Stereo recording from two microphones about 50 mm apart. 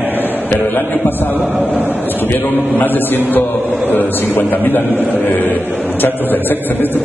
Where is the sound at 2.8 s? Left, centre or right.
Left.